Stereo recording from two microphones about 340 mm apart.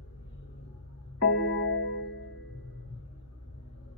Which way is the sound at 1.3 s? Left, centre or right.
Left.